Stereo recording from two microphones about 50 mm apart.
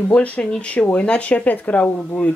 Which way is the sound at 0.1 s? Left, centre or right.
Left.